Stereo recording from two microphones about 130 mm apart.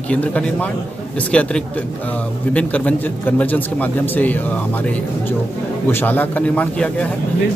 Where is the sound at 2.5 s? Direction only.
10° left (ahead or behind).